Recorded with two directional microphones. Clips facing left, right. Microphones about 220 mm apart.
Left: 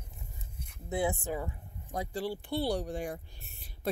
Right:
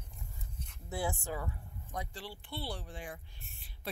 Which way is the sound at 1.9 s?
35° left (ahead or behind).